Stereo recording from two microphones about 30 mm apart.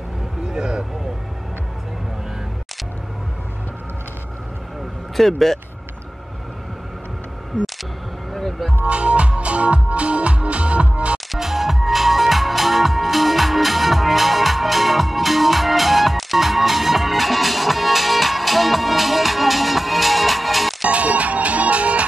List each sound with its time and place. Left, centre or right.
0.5 s vehicle: right
5.1 s speech: centre
8.3 s music: centre
8.8 s music: right
11.3 s music: centre
20.9 s music: right